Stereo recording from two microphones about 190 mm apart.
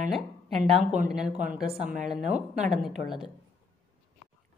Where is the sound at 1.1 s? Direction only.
5° right (ahead or behind).